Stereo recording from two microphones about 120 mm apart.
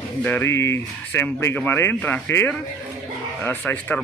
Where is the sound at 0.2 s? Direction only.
15° left (ahead or behind).